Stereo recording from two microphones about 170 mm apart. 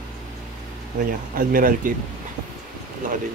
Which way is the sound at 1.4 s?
55° right (ahead or behind).